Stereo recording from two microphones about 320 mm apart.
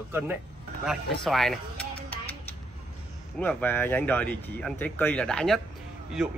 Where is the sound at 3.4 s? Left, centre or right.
Centre.